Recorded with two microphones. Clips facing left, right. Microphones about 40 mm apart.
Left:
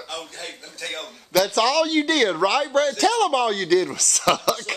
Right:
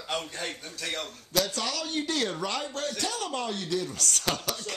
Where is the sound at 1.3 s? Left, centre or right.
Left.